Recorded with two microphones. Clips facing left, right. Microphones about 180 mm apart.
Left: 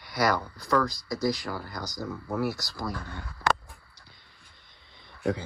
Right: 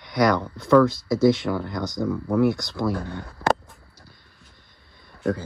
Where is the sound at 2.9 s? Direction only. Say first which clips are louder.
Right 9 dB; 60° right (ahead or behind).